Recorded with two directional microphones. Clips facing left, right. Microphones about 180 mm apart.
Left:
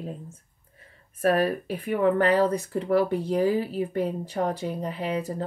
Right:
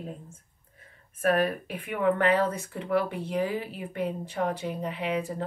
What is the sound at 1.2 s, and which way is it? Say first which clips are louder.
Speech: left 2 dB; 35° left (ahead or behind).